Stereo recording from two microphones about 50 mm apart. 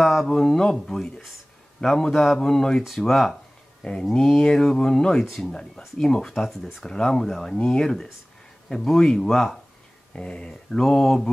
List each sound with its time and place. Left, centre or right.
0.0 s speech: centre
7.2 s speech: centre
7.5 s speech: centre